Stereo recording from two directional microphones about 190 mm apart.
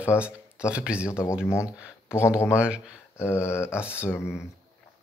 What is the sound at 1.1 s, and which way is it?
Speech, 15° left (ahead or behind).